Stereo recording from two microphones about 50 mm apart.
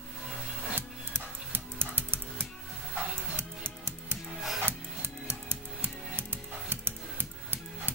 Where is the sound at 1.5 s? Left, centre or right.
Right.